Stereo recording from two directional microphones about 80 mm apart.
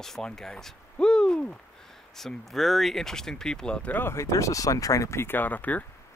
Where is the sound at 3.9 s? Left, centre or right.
Left.